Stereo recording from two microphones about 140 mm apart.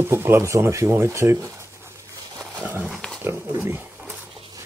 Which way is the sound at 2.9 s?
Centre (ahead or behind).